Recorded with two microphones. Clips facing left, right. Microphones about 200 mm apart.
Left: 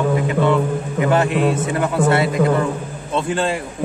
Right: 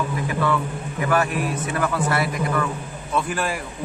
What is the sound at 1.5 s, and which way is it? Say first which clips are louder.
Speech: left 5 dB; 25° left (ahead or behind).